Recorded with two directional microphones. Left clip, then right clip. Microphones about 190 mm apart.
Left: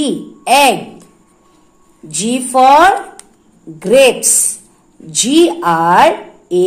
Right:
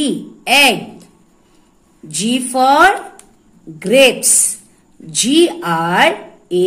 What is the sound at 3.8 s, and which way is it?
A woman's voice, 5° right (ahead or behind).